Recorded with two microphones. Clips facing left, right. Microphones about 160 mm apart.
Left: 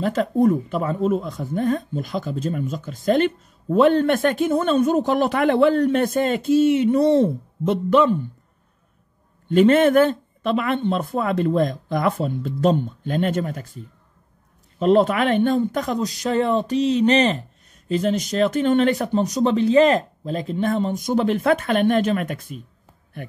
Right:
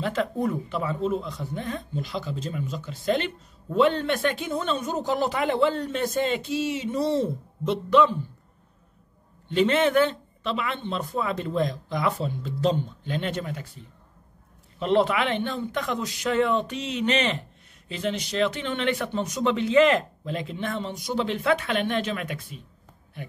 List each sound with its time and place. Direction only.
0.0 s speech: 40° left (ahead or behind)
9.5 s speech: 50° left (ahead or behind)